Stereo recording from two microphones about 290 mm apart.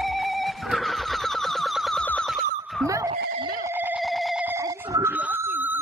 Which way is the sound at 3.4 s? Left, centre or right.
Centre.